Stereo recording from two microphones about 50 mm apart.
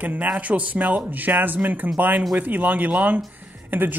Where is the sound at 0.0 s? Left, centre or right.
Right.